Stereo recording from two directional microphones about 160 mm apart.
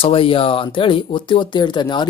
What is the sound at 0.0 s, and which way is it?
Speech, 35° left (ahead or behind).